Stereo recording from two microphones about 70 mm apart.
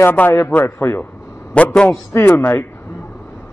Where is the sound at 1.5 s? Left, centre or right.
Centre.